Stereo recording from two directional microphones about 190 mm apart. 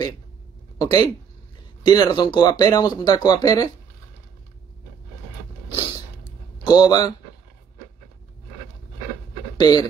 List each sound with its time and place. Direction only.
0.7 s speech: 20° left (ahead or behind)
5.7 s a sound: 20° left (ahead or behind)
6.6 s a man's voice: 20° left (ahead or behind)
9.6 s speech: 20° left (ahead or behind)